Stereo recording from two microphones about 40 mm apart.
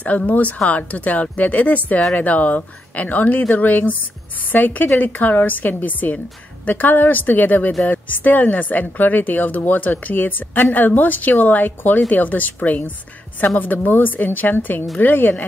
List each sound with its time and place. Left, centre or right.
0.3 s speech: left
13.6 s speech: left